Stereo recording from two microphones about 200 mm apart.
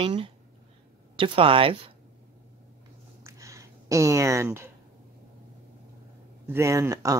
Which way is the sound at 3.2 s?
15° right (ahead or behind).